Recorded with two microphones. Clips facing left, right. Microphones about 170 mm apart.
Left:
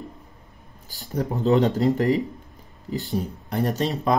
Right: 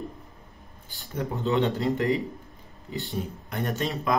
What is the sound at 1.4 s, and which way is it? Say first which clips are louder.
Speech: left 5 dB; 40° left (ahead or behind).